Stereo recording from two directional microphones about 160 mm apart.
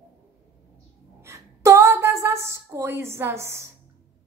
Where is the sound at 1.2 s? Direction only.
15° right (ahead or behind).